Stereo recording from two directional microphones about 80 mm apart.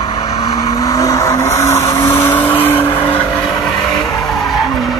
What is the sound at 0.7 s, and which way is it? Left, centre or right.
Vehicle, left.